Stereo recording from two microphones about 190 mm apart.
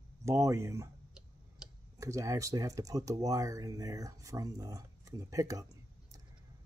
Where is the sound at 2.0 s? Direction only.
15° right (ahead or behind).